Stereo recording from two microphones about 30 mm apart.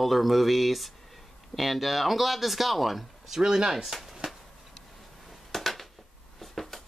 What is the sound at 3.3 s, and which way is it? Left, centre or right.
Speech, right.